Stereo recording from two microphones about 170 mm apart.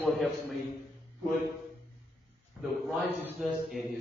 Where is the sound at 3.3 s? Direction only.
Centre (ahead or behind).